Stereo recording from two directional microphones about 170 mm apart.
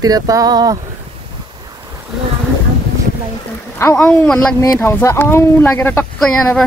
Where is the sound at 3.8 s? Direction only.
15° left (ahead or behind).